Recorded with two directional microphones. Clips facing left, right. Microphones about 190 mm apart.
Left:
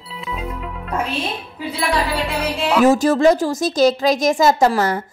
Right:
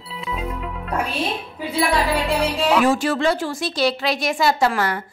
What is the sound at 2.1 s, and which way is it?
Music, 5° right (ahead or behind).